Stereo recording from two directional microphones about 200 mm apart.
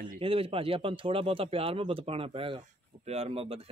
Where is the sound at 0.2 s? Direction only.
30° right (ahead or behind).